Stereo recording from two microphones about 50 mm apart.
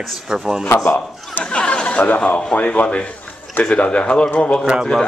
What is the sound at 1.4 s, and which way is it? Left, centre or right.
Speech, left.